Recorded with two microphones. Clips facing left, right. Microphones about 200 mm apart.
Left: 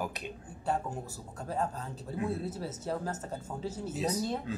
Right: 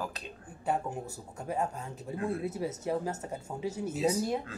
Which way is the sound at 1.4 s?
20° right (ahead or behind).